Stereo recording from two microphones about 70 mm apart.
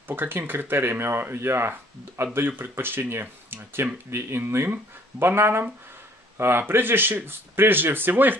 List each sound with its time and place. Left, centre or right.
0.1 s speech: right